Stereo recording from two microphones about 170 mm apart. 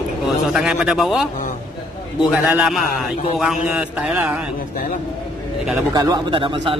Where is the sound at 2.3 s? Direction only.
5° right (ahead or behind).